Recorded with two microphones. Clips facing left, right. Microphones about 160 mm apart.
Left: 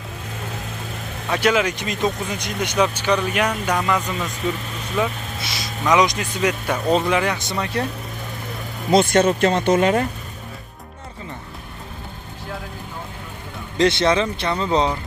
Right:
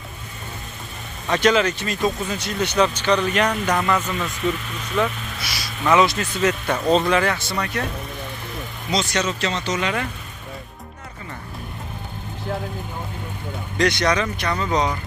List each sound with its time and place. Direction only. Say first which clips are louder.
1.3 s speech: right 1 dB; 10° left (ahead or behind)
8.9 s speech: left 8 dB; 55° left (ahead or behind)
13.7 s speech: left 3 dB; 25° left (ahead or behind)